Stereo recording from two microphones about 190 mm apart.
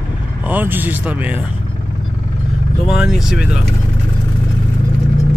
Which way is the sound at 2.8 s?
5° right (ahead or behind).